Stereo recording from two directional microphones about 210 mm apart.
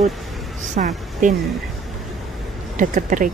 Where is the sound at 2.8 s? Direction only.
40° right (ahead or behind).